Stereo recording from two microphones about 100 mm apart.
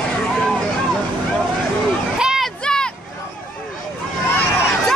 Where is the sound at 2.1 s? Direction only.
5° right (ahead or behind).